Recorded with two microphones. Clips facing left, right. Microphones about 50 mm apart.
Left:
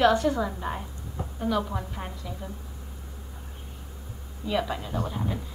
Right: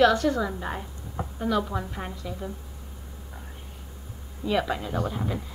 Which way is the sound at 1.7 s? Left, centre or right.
Centre.